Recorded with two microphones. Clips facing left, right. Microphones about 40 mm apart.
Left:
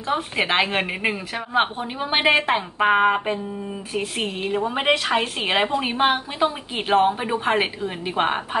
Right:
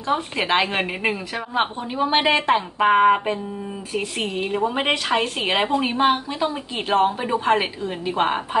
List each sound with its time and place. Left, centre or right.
0.1 s a woman's voice: centre
1.5 s a woman's voice: centre
5.9 s a woman's voice: left